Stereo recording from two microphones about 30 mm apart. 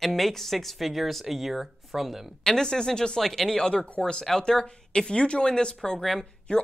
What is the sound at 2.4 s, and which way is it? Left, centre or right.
Speech, left.